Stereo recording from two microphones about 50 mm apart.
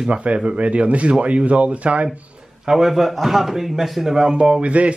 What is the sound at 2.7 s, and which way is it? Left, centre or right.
A man's voice, centre.